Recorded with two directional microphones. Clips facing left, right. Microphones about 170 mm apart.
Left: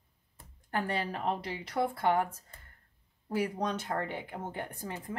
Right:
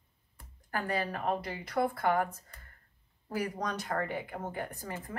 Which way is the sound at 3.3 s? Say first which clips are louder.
Left 3 dB; 30° left (ahead or behind).